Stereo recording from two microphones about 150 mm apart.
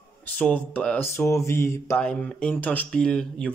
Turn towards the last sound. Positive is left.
turn(degrees=5)  # may be behind; listen again after turning